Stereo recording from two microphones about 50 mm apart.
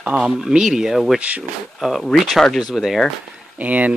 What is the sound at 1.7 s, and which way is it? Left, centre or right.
Speech, centre.